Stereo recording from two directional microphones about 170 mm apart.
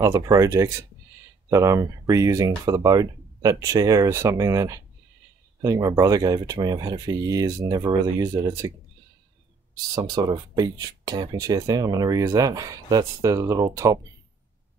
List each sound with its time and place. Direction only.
0.0 s speech: 20° right (ahead or behind)
9.9 s speech: 20° right (ahead or behind)